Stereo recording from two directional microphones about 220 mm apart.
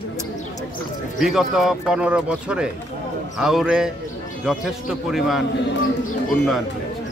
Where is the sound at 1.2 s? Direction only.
Centre (ahead or behind).